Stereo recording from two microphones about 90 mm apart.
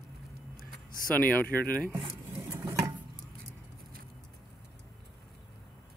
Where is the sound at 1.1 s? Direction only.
20° left (ahead or behind).